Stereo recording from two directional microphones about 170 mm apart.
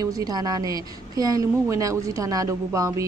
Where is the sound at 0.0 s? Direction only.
20° right (ahead or behind).